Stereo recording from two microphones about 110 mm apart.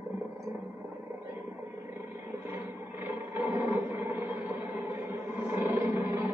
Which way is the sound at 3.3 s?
20° right (ahead or behind).